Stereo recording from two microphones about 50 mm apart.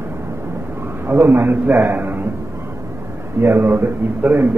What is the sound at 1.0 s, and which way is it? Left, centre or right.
A man's voice, right.